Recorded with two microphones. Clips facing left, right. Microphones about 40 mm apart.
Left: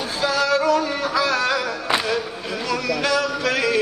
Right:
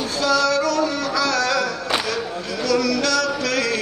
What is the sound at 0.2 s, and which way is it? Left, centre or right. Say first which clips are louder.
Music: right 1 dB; left.